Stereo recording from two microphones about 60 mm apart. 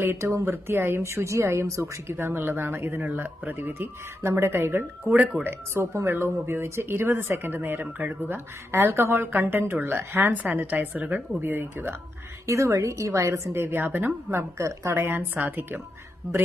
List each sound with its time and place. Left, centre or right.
0.2 s speech: right
5.1 s speech: right
5.8 s speech: right
10.3 s speech: right
12.4 s speech: right
14.3 s speech: right